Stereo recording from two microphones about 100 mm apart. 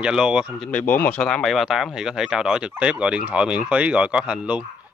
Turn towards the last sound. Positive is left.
turn(degrees=-10)  # may be behind; listen again after turning